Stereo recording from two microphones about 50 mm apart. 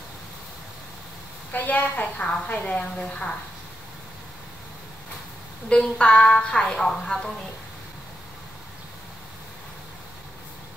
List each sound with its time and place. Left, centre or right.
1.5 s a woman's voice: left
5.7 s a woman's voice: left